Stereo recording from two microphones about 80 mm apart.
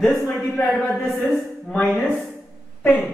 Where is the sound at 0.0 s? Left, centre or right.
Centre.